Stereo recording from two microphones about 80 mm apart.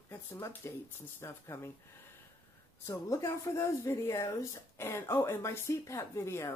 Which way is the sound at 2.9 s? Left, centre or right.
Left.